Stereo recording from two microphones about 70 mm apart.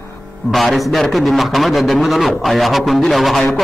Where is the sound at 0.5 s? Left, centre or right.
Centre.